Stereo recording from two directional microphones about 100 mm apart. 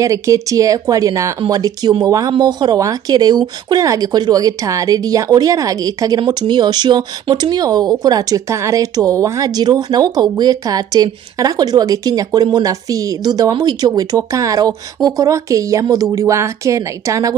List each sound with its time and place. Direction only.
0.0 s speech: 35° right (ahead or behind)
2.3 s speech: 45° right (ahead or behind)